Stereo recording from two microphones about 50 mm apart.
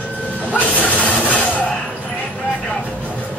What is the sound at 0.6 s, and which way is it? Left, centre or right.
Music, left.